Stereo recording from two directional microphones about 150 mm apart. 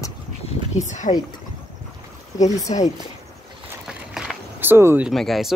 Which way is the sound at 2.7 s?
40° left (ahead or behind).